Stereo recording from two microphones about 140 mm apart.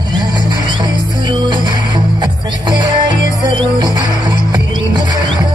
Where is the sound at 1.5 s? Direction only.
30° right (ahead or behind).